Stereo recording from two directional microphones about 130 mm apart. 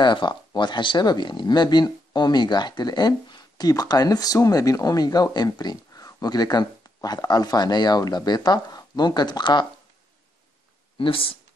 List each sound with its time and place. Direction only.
0.0 s speech: 35° left (ahead or behind)
11.0 s speech: 45° left (ahead or behind)